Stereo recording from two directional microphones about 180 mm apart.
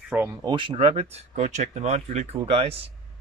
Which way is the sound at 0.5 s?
30° right (ahead or behind).